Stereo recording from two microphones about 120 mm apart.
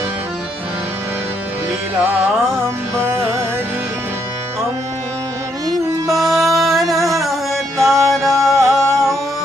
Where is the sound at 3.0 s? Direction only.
20° right (ahead or behind).